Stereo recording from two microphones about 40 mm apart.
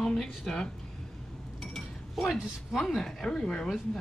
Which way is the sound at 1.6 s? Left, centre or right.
Centre.